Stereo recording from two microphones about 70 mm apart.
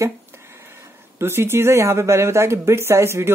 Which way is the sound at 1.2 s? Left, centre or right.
Right.